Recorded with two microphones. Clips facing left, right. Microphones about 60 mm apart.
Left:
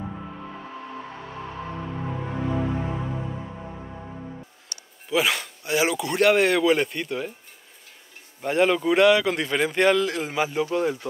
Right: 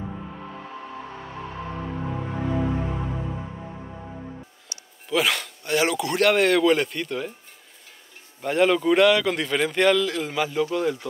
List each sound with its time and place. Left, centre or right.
5.1 s speech: centre
8.4 s speech: centre
9.9 s a man's voice: left